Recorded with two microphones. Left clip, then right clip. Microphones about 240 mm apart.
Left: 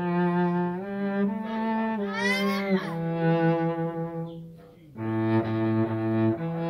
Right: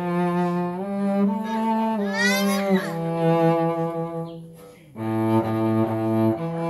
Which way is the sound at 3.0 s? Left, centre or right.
Right.